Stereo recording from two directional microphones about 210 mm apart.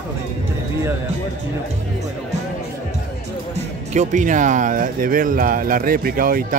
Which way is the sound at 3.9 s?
35° right (ahead or behind).